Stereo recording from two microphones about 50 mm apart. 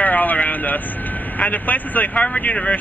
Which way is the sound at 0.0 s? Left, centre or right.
Left.